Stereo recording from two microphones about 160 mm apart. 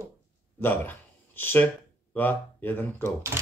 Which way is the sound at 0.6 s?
10° left (ahead or behind).